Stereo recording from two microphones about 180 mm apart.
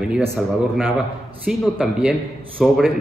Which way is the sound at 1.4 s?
5° right (ahead or behind).